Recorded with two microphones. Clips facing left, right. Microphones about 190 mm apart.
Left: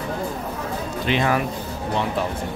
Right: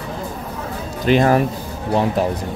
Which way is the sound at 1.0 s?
40° right (ahead or behind).